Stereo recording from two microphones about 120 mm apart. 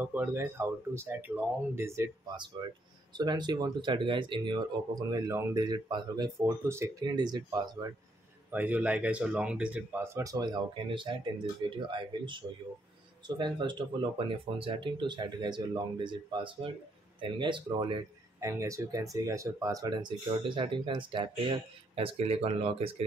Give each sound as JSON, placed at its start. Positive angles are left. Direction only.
{"t": 0.0, "sound": "speech", "side_deg": -15}
{"t": 2.2, "sound": "speech", "side_deg": -40}
{"t": 6.6, "sound": "speech", "side_deg": -20}
{"t": 7.2, "sound": "speech", "side_deg": -35}
{"t": 8.5, "sound": "speech", "side_deg": -15}
{"t": 10.0, "sound": "speech", "side_deg": -25}
{"t": 18.4, "sound": "speech", "side_deg": -25}